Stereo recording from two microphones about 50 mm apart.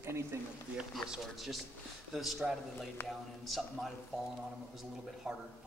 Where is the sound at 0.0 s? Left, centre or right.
Right.